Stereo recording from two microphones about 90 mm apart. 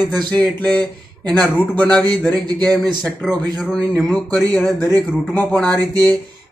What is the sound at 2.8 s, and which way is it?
Speech, centre (ahead or behind).